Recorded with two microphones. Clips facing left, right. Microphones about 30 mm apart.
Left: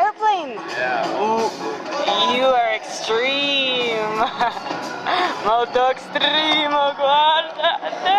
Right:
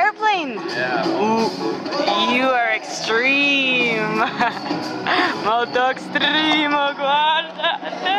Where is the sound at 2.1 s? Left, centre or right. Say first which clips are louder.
Left 1 dB; centre.